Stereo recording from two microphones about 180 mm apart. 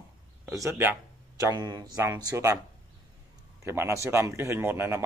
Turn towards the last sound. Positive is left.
turn(degrees=-15)  # may be behind; listen again after turning